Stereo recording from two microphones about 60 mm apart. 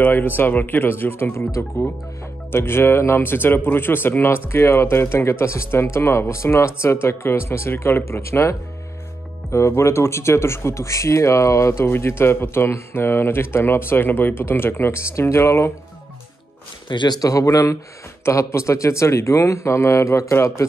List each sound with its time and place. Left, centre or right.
0.0 s speech: left
1.6 s speech: left
11.9 s speech: left
17.2 s a man's voice: left
18.2 s a man's voice: left